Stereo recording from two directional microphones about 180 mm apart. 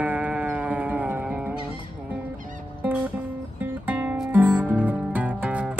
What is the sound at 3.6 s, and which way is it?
Music, 10° right (ahead or behind).